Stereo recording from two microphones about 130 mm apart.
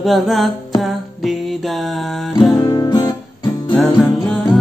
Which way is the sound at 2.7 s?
30° left (ahead or behind).